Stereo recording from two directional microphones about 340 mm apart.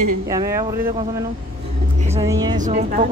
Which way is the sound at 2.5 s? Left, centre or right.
Right.